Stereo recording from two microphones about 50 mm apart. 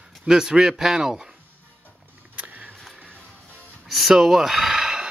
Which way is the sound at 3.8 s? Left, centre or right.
Centre.